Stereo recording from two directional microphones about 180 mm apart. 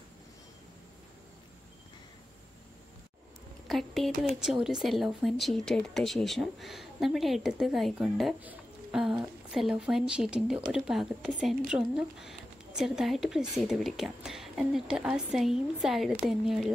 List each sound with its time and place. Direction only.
3.6 s speech: centre (ahead or behind)